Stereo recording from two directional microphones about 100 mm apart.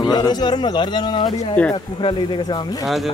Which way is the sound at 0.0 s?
45° left (ahead or behind).